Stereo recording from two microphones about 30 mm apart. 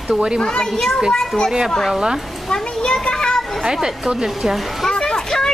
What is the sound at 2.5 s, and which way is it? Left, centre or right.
Speech, left.